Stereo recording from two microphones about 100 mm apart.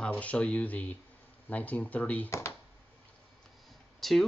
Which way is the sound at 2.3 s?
30° left (ahead or behind).